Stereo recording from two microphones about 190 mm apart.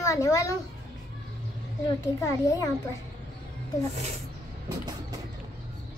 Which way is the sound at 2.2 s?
15° left (ahead or behind).